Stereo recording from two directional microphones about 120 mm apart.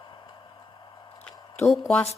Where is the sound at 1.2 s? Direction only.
Centre (ahead or behind).